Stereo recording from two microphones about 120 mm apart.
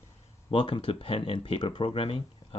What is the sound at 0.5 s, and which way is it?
Speech, 50° left (ahead or behind).